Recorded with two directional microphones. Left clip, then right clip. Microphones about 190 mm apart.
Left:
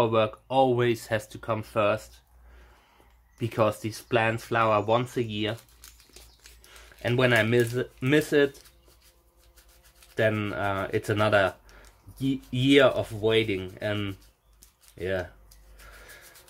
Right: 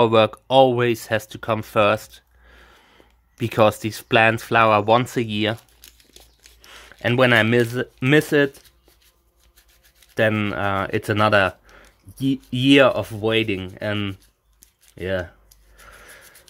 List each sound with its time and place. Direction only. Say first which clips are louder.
0.0 s speech: right 8 dB; 55° right (ahead or behind)
3.3 s speech: right 8 dB; 50° right (ahead or behind)
6.6 s speech: right 7 dB; 55° right (ahead or behind)
10.1 s speech: right 6 dB; 55° right (ahead or behind)